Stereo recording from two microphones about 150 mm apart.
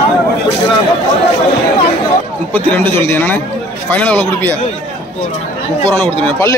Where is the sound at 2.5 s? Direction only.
10° left (ahead or behind).